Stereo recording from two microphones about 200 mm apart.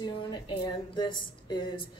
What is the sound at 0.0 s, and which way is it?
A woman's voice, 20° left (ahead or behind).